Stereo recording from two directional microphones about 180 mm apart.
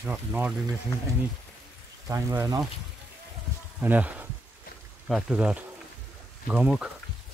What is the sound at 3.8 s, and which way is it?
Speech, 10° right (ahead or behind).